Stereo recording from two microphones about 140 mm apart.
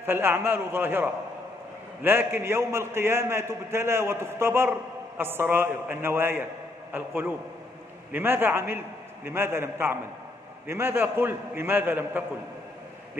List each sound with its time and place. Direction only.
0.0 s a man's voice: 15° right (ahead or behind)